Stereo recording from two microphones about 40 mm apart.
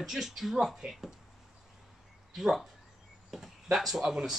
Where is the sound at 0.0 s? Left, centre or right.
Centre.